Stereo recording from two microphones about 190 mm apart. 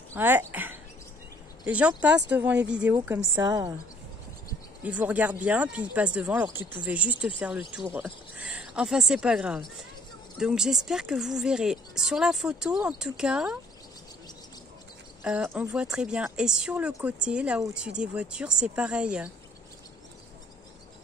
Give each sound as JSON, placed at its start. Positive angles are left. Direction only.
{"t": 0.1, "sound": "speech", "side_deg": -10}
{"t": 3.4, "sound": "a woman's voice", "side_deg": -20}
{"t": 4.8, "sound": "speech", "side_deg": -5}
{"t": 15.2, "sound": "speech", "side_deg": -10}